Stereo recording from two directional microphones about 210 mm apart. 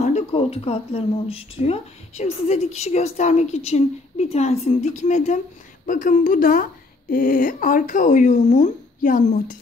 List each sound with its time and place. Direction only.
0.0 s speech: 30° left (ahead or behind)